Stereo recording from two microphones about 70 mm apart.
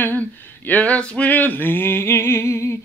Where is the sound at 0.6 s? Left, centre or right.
Centre.